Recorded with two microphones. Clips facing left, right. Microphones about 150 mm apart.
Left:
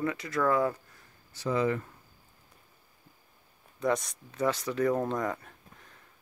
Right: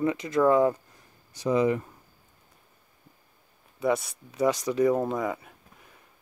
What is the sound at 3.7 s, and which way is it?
Speech, 5° right (ahead or behind).